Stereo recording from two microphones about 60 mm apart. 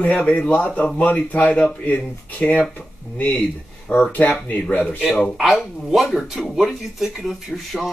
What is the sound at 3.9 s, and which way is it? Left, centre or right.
Speech, left.